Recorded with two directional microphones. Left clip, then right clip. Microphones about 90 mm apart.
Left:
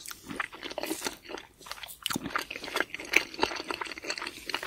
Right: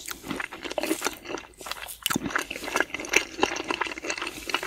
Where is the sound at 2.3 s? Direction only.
5° left (ahead or behind).